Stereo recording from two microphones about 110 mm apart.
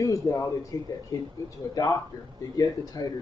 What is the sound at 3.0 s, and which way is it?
Speech, 35° left (ahead or behind).